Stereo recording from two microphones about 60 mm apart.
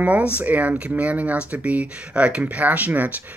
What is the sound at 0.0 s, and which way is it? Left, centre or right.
Speech, right.